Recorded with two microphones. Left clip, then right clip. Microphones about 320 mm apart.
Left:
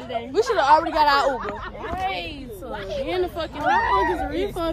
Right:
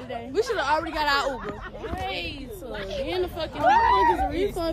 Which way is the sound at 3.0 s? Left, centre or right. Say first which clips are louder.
Left 4 dB; centre.